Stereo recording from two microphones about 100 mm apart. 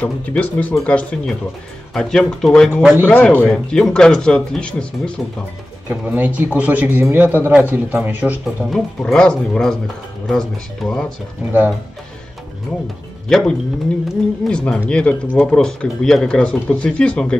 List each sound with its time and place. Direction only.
0.0 s speech: 15° left (ahead or behind)
2.7 s a man's voice: 20° right (ahead or behind)
3.1 s speech: 15° left (ahead or behind)
3.4 s speech: 5° left (ahead or behind)
5.9 s a man's voice: 15° right (ahead or behind)
8.6 s speech: 5° left (ahead or behind)
13.3 s speech: 5° left (ahead or behind)